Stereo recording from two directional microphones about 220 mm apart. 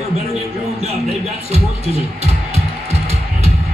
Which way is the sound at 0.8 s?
30° right (ahead or behind).